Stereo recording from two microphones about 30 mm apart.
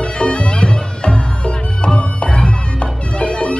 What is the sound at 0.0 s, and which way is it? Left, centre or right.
Bagpipes, left.